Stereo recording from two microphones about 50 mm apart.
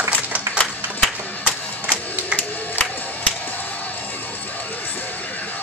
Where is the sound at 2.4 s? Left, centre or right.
Left.